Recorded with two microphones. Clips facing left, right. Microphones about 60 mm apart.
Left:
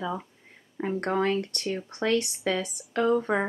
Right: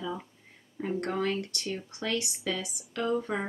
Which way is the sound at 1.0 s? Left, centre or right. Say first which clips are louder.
Left 6 dB; left.